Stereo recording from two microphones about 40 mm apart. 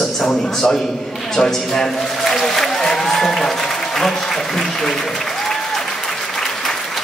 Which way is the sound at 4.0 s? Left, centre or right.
Centre.